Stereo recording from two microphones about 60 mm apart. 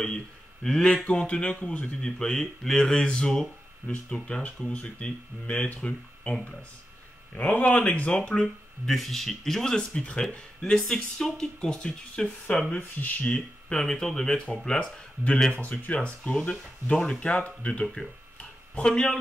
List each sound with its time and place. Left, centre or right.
0.7 s speech: centre
1.0 s speech: centre
2.0 s speech: centre
8.8 s speech: centre; by 13.4 s left
13.7 s speech: centre
17.9 s a sound: centre